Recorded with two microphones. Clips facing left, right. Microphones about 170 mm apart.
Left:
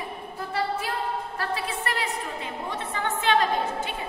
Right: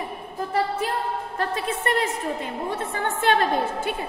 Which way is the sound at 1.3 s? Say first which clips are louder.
Right 3 dB; 45° right (ahead or behind).